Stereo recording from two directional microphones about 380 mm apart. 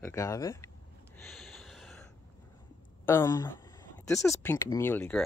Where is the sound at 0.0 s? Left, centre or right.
Centre.